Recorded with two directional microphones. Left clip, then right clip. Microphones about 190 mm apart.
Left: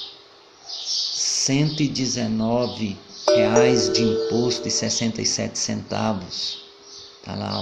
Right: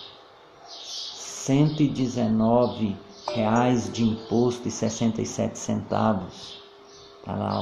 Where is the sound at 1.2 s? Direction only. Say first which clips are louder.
Right 1 dB; centre (ahead or behind).